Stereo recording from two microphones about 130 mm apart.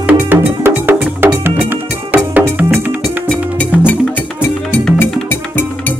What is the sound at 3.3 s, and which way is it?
Music, 10° left (ahead or behind).